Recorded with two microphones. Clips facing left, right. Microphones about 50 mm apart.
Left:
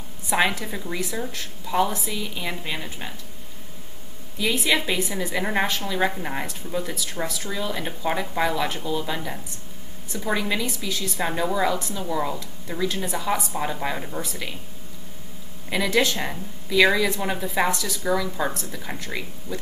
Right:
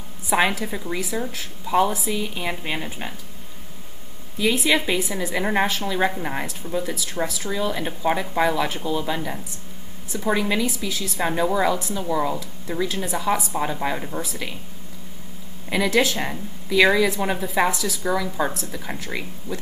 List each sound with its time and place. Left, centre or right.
0.3 s a woman's voice: centre
2.1 s a woman's voice: centre
4.4 s a woman's voice: centre
15.7 s a woman's voice: centre